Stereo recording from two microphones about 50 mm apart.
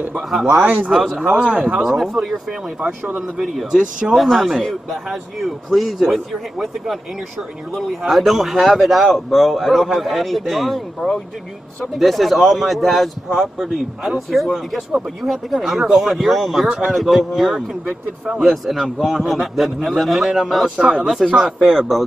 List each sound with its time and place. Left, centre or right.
0.6 s speech: right
1.8 s a man's voice: centre
3.2 s a man's voice: centre
20.7 s speech: right
21.0 s a man's voice: centre